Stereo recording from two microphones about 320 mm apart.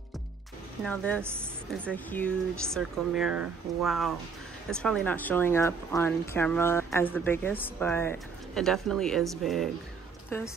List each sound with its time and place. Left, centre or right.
0.8 s speech: centre
1.2 s a woman's voice: centre
1.9 s a woman's voice: centre